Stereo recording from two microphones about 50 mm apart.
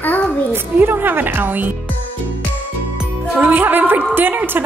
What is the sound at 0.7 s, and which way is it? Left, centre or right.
Speech, right.